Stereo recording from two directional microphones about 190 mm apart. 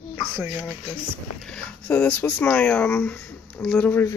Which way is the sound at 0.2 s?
10° right (ahead or behind).